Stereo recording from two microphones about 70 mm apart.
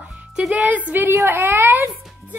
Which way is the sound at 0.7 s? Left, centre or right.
Right.